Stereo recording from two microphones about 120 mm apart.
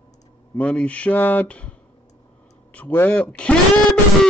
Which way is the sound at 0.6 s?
10° left (ahead or behind).